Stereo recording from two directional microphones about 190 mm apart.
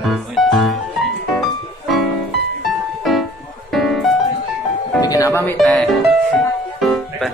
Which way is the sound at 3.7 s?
Centre (ahead or behind).